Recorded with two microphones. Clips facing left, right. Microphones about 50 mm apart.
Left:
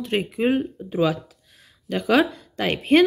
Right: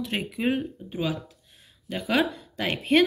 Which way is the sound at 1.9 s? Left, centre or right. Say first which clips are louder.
Left 6 dB; left.